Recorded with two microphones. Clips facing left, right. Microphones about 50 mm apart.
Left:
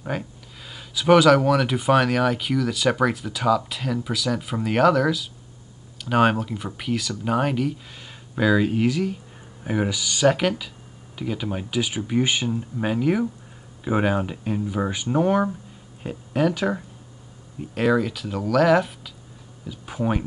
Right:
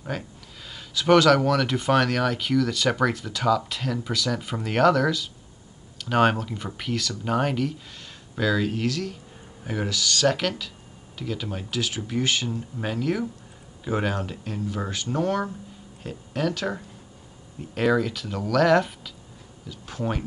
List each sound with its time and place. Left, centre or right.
0.0 s speech: centre